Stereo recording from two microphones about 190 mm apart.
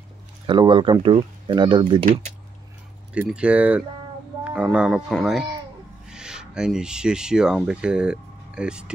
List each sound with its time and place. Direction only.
0.5 s speech: 25° right (ahead or behind)
3.2 s speech: 5° right (ahead or behind)